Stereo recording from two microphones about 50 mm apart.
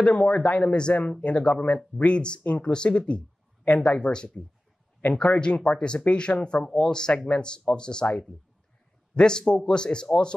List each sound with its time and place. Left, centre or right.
0.0 s speech: left